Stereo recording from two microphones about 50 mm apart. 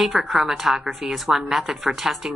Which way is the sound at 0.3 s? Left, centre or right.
Centre.